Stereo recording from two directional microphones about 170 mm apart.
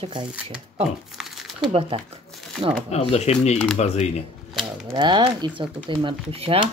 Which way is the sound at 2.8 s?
40° left (ahead or behind).